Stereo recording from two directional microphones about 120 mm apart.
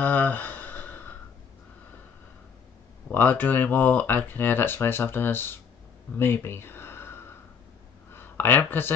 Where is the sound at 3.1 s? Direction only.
15° left (ahead or behind).